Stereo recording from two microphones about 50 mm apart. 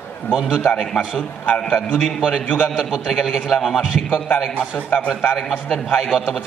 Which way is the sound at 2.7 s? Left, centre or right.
Centre.